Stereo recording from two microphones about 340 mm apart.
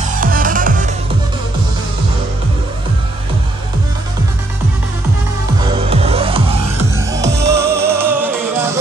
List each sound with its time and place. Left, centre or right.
0.0 s music: right
5.9 s music: centre